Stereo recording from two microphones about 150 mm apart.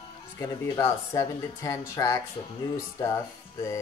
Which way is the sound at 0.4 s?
20° left (ahead or behind).